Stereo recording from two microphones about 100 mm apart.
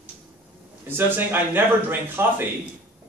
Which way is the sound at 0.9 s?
20° right (ahead or behind).